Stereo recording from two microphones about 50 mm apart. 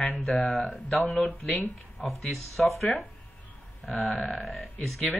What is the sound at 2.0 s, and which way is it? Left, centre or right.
Speech, centre.